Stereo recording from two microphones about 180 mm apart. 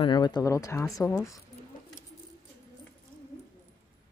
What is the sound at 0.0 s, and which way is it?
Speech, 25° left (ahead or behind).